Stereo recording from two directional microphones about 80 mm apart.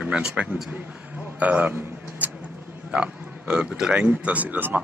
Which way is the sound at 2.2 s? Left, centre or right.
Centre.